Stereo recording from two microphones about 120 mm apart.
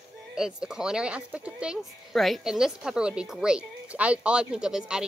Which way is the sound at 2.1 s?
Centre (ahead or behind).